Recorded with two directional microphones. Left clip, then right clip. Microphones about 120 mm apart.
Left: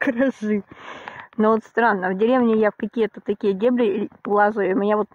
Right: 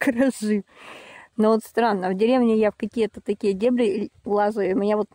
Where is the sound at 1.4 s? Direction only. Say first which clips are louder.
Left 2 dB; 25° right (ahead or behind).